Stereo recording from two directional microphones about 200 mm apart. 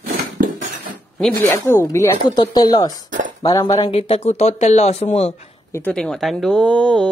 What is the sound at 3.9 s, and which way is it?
Speech, 30° left (ahead or behind).